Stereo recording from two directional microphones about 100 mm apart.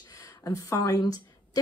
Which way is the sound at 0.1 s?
35° left (ahead or behind).